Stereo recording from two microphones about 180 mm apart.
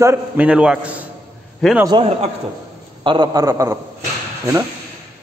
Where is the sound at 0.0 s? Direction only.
10° right (ahead or behind).